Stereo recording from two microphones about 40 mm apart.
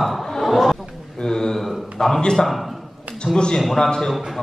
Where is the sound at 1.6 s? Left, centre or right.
Centre.